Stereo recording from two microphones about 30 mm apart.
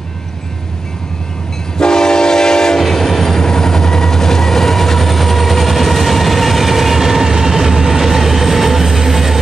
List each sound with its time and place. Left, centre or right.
1.8 s train: left; by 9.4 s centre